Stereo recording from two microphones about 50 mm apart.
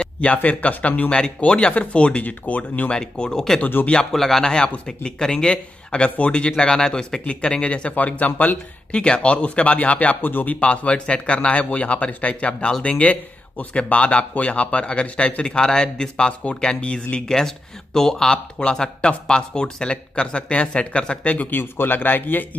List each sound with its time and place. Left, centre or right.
0.2 s speech: left
1.1 s speech: centre
3.0 s speech: centre
4.1 s speech: centre; by 7.9 s left
7.9 s a man's voice: left
8.9 s speech: centre
21.5 s a man's voice: left